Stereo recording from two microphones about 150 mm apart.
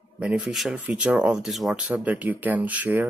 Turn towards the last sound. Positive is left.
turn(degrees=-10)  # may be behind; listen again after turning